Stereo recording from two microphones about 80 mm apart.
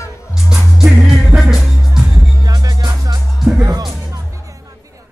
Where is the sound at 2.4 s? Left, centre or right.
Right.